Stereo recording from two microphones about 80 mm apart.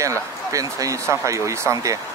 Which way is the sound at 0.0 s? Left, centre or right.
Right.